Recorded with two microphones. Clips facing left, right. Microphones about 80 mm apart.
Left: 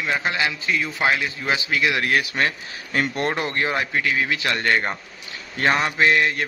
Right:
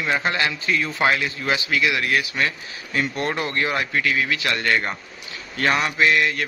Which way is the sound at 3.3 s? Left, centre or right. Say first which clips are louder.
Even; left.